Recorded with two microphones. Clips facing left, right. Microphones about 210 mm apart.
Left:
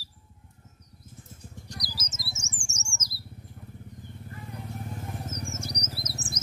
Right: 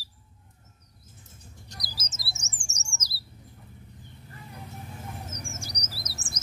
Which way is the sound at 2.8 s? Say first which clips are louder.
Left 2 dB; 35° right (ahead or behind).